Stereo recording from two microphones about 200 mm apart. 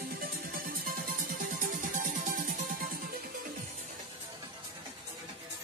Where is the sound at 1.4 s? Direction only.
45° right (ahead or behind).